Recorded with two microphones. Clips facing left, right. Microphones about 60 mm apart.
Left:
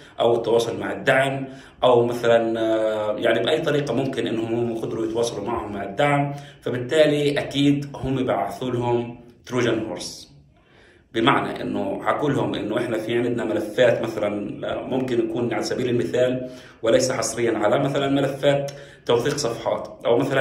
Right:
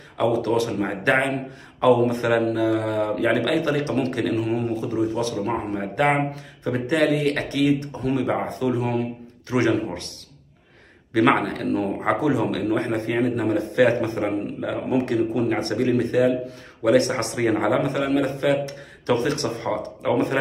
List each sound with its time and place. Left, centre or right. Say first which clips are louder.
0.2 s a man's voice: left 3 dB; right
11.1 s a man's voice: right 1 dB; right